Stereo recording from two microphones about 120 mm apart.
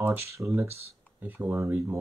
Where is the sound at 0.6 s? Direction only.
60° right (ahead or behind).